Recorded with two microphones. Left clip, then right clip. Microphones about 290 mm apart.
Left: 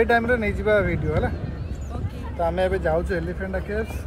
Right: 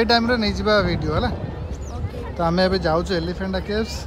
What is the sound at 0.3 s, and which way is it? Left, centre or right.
Speech, right.